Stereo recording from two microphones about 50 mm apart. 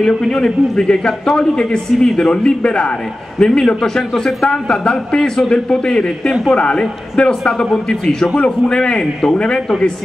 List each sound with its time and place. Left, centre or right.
0.0 s a man's voice: centre